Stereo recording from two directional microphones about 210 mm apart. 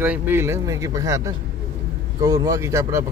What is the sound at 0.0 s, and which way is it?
Speech, 10° right (ahead or behind).